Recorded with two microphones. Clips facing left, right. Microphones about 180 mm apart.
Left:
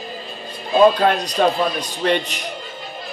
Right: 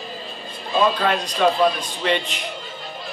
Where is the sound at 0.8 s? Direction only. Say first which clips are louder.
Left 7 dB; 45° left (ahead or behind).